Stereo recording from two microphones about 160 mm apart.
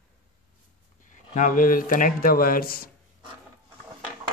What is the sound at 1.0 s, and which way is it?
Speech, 50° left (ahead or behind).